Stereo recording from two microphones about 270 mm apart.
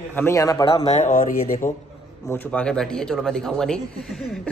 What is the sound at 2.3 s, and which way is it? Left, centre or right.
Speech, centre.